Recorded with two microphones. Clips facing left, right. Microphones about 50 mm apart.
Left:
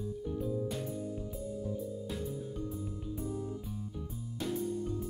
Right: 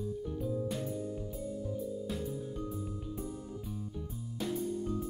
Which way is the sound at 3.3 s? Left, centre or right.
Centre.